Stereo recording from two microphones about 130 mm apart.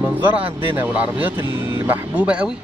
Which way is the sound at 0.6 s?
15° right (ahead or behind).